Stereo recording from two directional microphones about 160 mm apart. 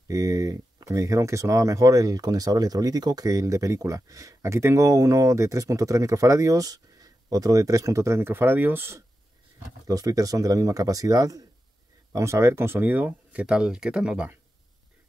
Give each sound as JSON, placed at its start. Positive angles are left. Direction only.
{"t": 0.1, "sound": "speech", "side_deg": -20}